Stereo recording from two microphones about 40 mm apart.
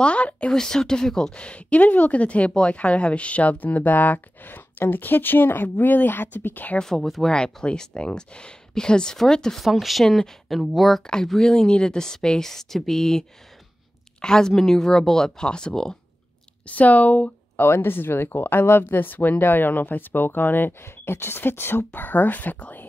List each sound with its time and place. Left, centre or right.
0.0 s speech: left
0.5 s speech: centre
1.3 s speech: left
6.8 s speech: centre
7.2 s speech: left
9.6 s speech: centre
10.0 s speech: centre
11.4 s speech: centre
14.2 s speech: centre
16.6 s speech: left
17.6 s speech: left
21.9 s speech: left